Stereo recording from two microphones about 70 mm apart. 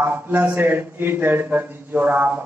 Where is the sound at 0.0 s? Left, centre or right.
Right.